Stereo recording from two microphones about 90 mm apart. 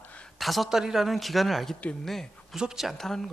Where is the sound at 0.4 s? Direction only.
Centre (ahead or behind).